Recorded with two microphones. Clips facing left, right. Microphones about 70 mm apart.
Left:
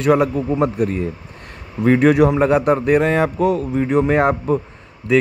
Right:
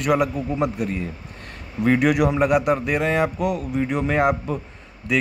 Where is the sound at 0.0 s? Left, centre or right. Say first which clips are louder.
Left 5 dB; left.